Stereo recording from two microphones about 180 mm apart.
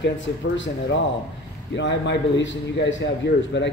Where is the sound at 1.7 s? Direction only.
80° left.